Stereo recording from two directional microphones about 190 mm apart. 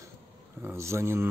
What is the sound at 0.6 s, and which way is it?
Speech, 10° right (ahead or behind).